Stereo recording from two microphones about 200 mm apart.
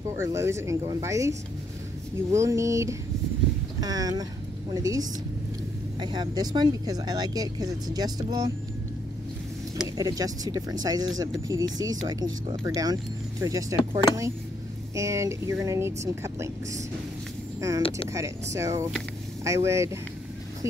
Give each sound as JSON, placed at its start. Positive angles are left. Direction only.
{"t": 0.1, "sound": "speech", "side_deg": -15}
{"t": 9.9, "sound": "speech", "side_deg": -20}
{"t": 15.0, "sound": "speech", "side_deg": -15}